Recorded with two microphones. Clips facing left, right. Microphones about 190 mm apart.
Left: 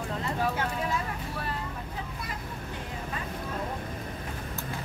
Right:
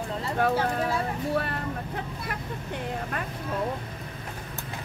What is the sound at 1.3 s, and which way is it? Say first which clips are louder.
Speech: right 10 dB; 60° right (ahead or behind).